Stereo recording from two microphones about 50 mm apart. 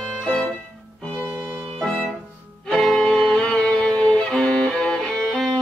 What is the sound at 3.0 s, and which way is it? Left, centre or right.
Music, centre.